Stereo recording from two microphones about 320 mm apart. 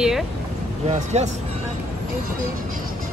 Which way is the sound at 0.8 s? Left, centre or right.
Right.